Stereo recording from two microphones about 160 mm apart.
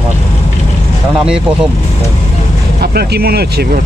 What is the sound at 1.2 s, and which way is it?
Speech, 5° right (ahead or behind).